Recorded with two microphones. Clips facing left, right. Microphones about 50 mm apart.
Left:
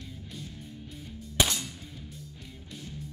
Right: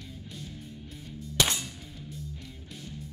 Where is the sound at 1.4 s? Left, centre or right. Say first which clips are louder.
Even; centre.